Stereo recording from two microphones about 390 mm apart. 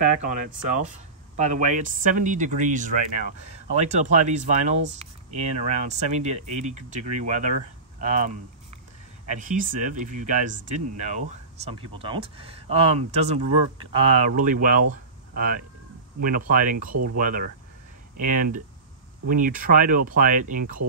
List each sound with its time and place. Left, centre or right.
0.0 s speech: centre
9.3 s speech: centre